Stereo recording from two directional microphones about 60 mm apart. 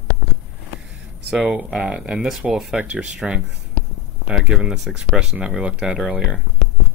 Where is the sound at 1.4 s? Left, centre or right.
Centre.